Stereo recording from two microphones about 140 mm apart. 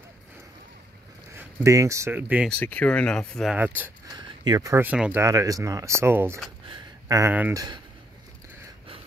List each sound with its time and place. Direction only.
1.3 s speech: 20° right (ahead or behind)
2.5 s speech: 10° left (ahead or behind)
3.5 s speech: 15° right (ahead or behind)
4.1 s speech: 30° right (ahead or behind)
4.8 s speech: 10° right (ahead or behind)
5.2 s speech: 25° right (ahead or behind)
6.7 s a sound: 25° right (ahead or behind)
7.5 s speech: 30° right (ahead or behind)